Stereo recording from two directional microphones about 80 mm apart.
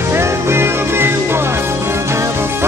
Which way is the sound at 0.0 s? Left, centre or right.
Right.